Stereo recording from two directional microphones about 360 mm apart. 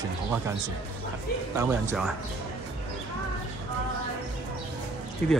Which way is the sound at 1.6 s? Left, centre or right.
Centre.